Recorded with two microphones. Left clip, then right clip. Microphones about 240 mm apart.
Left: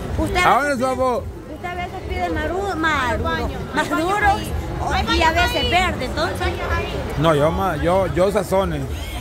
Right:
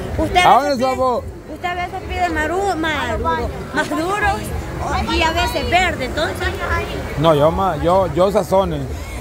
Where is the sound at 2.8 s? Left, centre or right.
Centre.